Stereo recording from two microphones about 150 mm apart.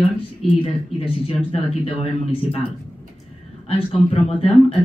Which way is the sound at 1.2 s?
45° left (ahead or behind).